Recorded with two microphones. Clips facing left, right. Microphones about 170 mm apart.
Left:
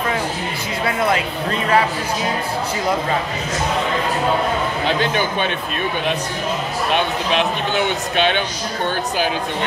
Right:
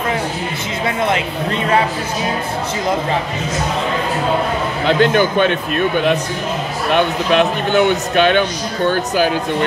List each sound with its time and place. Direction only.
4.8 s speech: 60° right (ahead or behind)
6.9 s speech: 50° right (ahead or behind)